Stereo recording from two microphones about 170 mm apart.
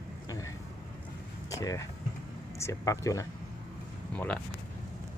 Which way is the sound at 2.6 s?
20° left (ahead or behind).